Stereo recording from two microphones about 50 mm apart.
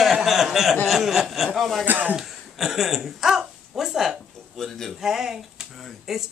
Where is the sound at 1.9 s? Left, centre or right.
Right.